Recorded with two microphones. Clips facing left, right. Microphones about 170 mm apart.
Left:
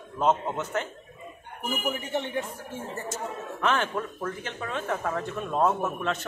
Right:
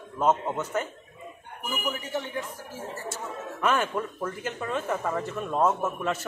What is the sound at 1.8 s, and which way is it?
Speech, 25° left (ahead or behind).